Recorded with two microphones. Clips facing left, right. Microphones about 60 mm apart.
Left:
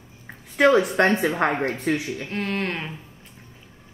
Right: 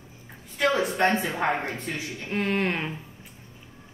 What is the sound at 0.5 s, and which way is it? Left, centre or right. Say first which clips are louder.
A woman's voice: left 7 dB; left.